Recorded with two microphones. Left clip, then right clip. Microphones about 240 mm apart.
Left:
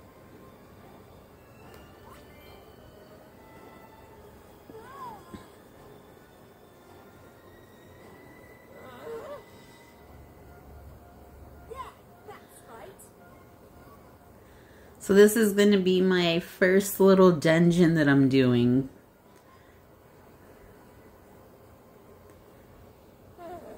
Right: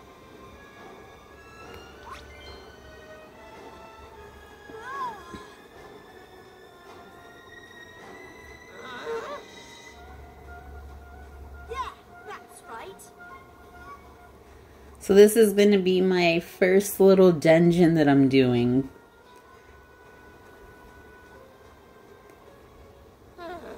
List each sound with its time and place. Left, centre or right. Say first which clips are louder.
8.8 s a sound: right 6 dB; right
11.7 s music: right 8 dB; right
15.0 s speech: right 3 dB; centre